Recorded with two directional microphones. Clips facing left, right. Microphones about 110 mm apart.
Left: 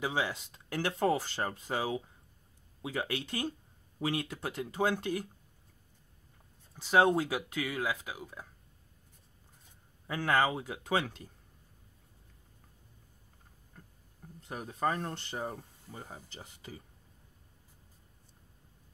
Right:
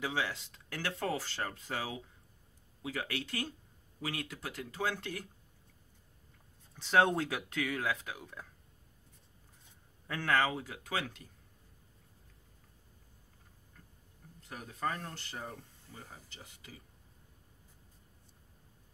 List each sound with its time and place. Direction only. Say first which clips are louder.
0.0 s speech: left 3 dB; 15° left (ahead or behind)
6.7 s speech: left 2 dB; 10° left (ahead or behind)
10.0 s speech: left 2 dB; 15° left (ahead or behind)
14.5 s speech: left 5 dB; 25° left (ahead or behind)